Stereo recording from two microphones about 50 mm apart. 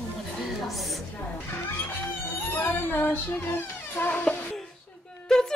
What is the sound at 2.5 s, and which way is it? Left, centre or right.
Cat, left.